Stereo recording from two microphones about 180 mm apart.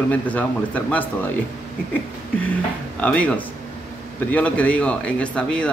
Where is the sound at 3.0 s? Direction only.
5° left (ahead or behind).